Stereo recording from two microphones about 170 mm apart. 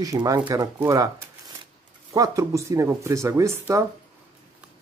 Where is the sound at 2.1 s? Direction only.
20° right (ahead or behind).